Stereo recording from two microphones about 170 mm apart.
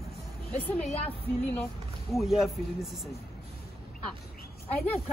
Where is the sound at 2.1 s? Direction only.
Centre (ahead or behind).